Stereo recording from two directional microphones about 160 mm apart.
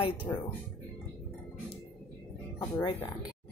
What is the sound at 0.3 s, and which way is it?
Speech, 15° left (ahead or behind).